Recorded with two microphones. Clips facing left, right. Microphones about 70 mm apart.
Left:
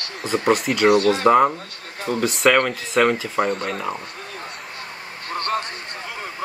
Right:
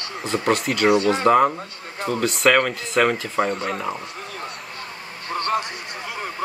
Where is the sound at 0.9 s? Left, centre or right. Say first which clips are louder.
Left 1 dB; right.